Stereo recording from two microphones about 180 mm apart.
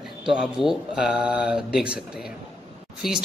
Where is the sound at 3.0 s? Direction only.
5° right (ahead or behind).